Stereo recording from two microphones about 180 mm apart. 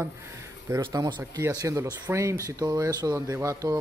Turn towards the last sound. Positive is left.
turn(degrees=-20)  # may be behind; listen again after turning